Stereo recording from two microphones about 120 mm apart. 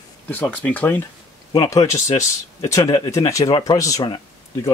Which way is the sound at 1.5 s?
30° left (ahead or behind).